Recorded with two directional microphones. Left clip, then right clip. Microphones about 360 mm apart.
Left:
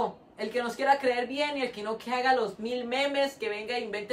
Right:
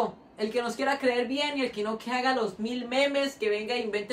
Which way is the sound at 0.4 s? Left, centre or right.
Centre.